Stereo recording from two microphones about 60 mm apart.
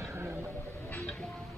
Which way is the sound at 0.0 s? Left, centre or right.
Right.